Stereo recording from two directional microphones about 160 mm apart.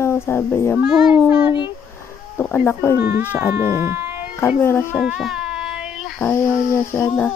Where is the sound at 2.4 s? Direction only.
10° left (ahead or behind).